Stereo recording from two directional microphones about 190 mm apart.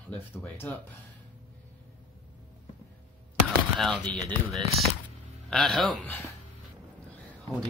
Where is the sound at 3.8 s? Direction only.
5° left (ahead or behind).